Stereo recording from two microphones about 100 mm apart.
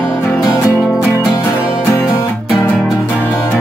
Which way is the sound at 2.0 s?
30° left (ahead or behind).